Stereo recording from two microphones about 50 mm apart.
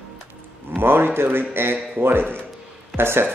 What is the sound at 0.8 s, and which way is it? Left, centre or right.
Speech, right.